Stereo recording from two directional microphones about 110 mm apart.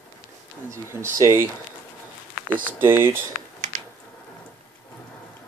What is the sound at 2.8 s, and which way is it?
Speech, 20° right (ahead or behind).